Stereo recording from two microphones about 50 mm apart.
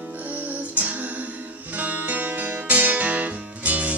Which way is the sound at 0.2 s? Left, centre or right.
Right.